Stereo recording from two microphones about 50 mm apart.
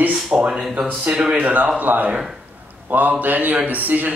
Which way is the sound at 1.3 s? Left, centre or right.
Right.